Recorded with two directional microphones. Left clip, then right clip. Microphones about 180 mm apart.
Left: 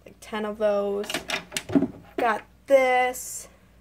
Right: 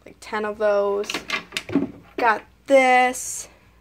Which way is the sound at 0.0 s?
15° right (ahead or behind).